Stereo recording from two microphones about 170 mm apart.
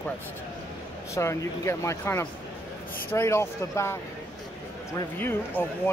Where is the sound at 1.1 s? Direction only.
15° left (ahead or behind).